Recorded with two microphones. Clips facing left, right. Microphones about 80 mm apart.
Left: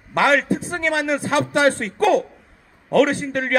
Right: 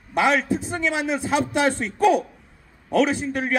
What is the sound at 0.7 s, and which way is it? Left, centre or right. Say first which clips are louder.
A man's voice: left 4 dB; left.